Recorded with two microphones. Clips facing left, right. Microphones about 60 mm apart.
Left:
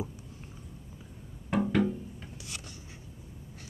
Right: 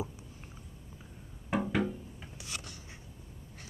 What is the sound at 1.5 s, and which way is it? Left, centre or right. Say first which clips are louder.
Music: left 4 dB; centre.